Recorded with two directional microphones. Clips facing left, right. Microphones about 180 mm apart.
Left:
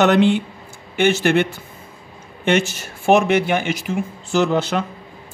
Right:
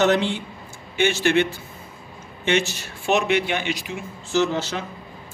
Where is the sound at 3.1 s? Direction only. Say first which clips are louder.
Left 6 dB; 50° left (ahead or behind).